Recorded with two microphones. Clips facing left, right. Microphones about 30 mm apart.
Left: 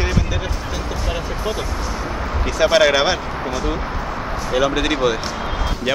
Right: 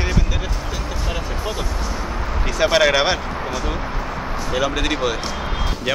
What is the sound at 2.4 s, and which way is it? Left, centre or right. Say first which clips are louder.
Speech: left 2 dB; centre.